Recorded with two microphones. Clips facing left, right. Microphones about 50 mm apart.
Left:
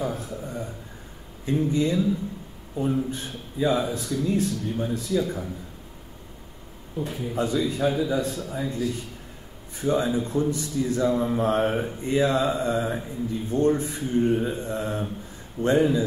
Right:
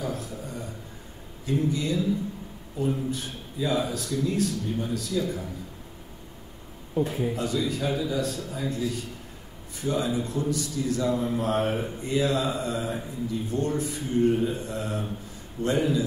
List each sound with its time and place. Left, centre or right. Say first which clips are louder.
0.0 s a man's voice: left 3 dB; left
7.3 s a man's voice: left 3 dB; left